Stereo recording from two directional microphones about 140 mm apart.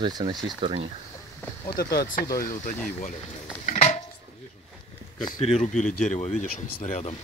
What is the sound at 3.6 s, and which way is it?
Dishes, 55° left (ahead or behind).